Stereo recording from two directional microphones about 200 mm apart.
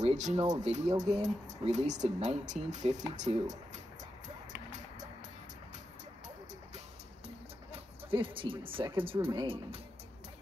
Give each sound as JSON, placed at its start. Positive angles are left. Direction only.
{"t": 0.0, "sound": "speech", "side_deg": -35}
{"t": 7.7, "sound": "speech", "side_deg": -25}